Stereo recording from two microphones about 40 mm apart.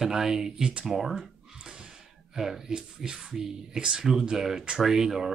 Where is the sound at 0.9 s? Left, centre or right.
Centre.